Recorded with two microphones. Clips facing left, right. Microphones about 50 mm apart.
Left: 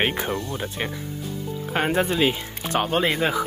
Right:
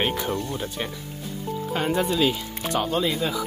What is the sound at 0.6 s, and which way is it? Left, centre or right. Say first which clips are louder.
Speech: left 1 dB; left.